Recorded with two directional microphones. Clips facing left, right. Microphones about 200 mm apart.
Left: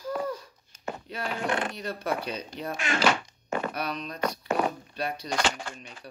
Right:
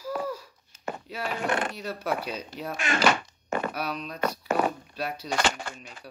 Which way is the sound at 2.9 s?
50° right (ahead or behind).